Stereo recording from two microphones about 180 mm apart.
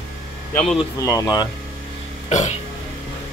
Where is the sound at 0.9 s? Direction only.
20° left (ahead or behind).